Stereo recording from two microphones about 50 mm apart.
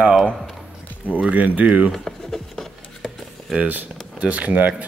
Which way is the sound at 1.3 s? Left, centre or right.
Right.